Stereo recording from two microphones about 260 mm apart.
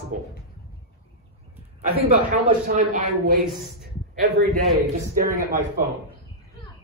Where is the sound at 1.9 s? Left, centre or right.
Right.